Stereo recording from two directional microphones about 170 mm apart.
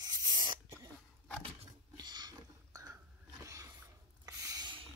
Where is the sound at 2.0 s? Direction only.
25° right (ahead or behind).